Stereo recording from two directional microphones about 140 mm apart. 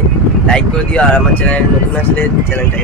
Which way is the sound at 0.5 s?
10° left (ahead or behind).